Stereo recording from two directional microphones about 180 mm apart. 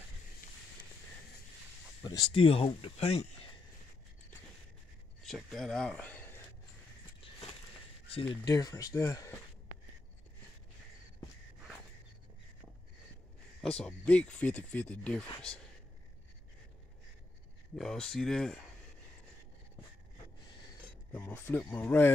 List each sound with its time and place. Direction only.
2.0 s speech: 25° left (ahead or behind)
5.2 s speech: centre (ahead or behind)
8.5 s speech: 20° left (ahead or behind)
13.7 s speech: 5° left (ahead or behind)
17.7 s speech: 5° left (ahead or behind)
21.1 s speech: 10° left (ahead or behind)